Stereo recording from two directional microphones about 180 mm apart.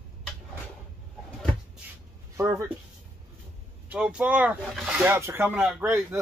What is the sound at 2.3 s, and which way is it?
Speech, 15° right (ahead or behind).